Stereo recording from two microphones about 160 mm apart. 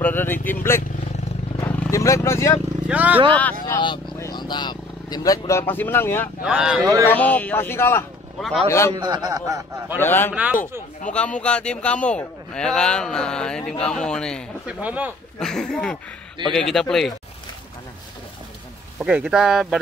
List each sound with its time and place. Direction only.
0.0 s speech: 10° left (ahead or behind)
1.9 s speech: 20° left (ahead or behind)
2.9 s speech: 10° right (ahead or behind)
3.3 s speech: 10° left (ahead or behind)
3.6 s speech: 30° left (ahead or behind)
6.4 s a man's voice: 5° right (ahead or behind)
7.1 s speech: 10° left (ahead or behind)
8.4 s a man's voice: centre (ahead or behind)
8.6 s speech: 15° left (ahead or behind)
8.9 s a man's voice: 25° right (ahead or behind)
9.9 s a man's voice: 15° left (ahead or behind)
14.7 s speech: 10° right (ahead or behind)
15.3 s a man's voice: 5° left (ahead or behind)
18.9 s a man's voice: 10° right (ahead or behind)